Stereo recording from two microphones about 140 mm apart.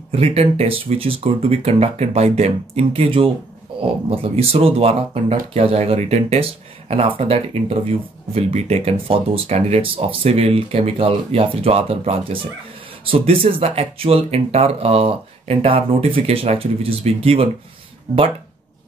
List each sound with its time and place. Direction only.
0.1 s speech: 45° right (ahead or behind)